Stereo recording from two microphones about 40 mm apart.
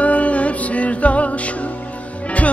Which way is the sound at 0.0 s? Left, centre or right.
Left.